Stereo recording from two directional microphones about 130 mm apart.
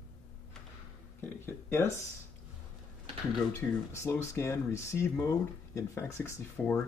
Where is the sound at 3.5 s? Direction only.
20° left (ahead or behind).